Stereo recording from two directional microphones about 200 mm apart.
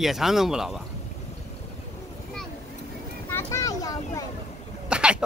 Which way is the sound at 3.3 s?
10° left (ahead or behind).